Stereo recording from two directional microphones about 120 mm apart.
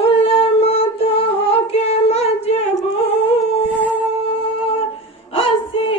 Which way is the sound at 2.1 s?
60° left (ahead or behind).